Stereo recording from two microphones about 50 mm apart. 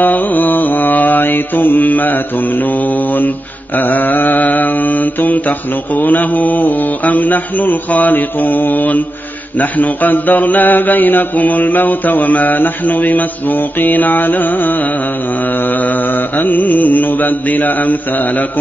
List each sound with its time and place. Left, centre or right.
0.0 s mantra: left